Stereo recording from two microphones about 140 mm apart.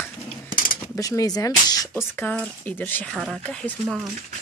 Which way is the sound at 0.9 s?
25° left (ahead or behind).